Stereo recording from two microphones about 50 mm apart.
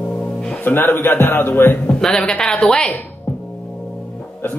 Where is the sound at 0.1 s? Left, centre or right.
Centre.